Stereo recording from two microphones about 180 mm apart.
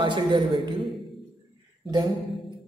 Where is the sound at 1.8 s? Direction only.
25° right (ahead or behind).